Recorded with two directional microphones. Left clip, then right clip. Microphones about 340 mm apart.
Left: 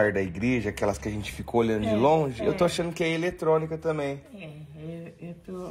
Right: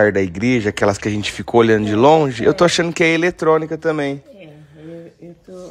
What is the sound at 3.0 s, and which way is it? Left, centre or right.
Speech, right.